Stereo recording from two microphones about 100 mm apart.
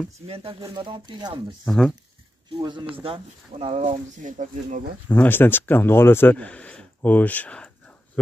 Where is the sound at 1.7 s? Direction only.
5° left (ahead or behind).